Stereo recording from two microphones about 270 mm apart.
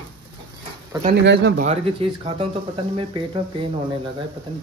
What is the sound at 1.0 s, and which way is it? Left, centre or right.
Speech, right.